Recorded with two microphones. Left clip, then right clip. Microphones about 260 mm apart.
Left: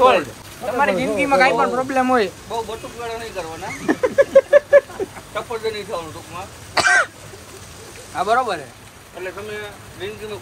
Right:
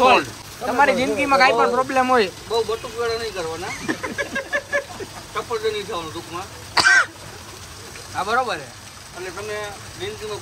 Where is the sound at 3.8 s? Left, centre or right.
Centre.